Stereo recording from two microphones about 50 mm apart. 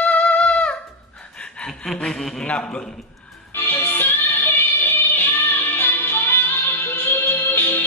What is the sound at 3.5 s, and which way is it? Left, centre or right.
Music, left.